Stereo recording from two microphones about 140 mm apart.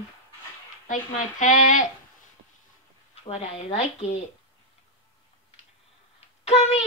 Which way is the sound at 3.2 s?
50° left (ahead or behind).